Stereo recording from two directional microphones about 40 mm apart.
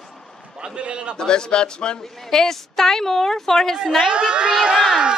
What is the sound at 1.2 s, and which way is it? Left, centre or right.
A woman's voice, centre.